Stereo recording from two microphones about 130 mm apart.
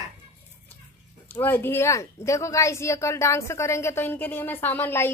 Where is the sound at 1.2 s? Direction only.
15° left (ahead or behind).